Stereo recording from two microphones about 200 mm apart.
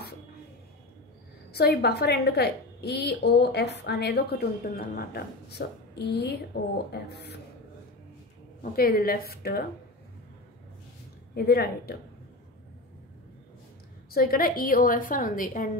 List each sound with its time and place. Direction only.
1.5 s a woman's voice: 55° left (ahead or behind)
8.7 s a woman's voice: 50° left (ahead or behind)
11.3 s a woman's voice: 50° left (ahead or behind)
14.1 s a woman's voice: 45° left (ahead or behind)